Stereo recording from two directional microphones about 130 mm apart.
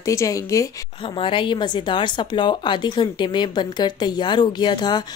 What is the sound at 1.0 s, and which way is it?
A woman's voice, 40° left (ahead or behind).